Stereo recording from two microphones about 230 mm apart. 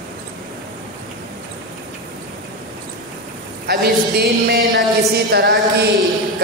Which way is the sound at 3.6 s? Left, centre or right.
Right.